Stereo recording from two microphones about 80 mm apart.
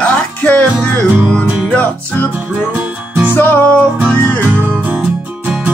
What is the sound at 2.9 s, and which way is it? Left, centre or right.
Music, centre.